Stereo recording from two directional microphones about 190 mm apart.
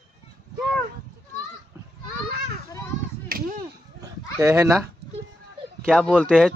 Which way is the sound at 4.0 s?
15° right (ahead or behind).